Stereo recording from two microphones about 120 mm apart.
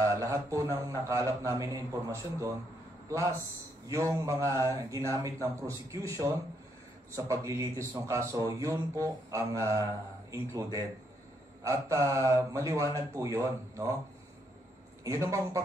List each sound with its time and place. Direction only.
0.0 s a man's voice: 25° right (ahead or behind)
15.0 s a man's voice: 25° right (ahead or behind)